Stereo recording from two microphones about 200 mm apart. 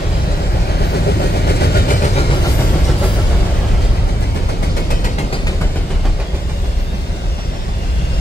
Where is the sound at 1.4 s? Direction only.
50° left (ahead or behind).